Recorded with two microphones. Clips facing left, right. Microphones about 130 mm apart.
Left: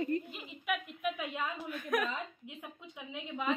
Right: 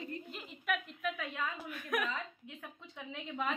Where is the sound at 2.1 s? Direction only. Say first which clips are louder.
Left 1 dB; 20° left (ahead or behind).